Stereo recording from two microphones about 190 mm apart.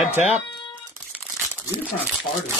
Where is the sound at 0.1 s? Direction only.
35° left (ahead or behind).